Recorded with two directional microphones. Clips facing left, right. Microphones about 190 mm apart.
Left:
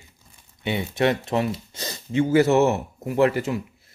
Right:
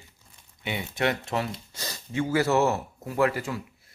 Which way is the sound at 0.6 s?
25° left (ahead or behind).